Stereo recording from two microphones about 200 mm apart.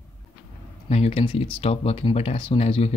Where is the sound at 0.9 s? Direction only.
30° left (ahead or behind).